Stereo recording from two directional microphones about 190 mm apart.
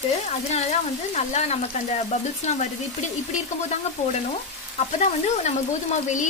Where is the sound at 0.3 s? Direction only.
35° left (ahead or behind).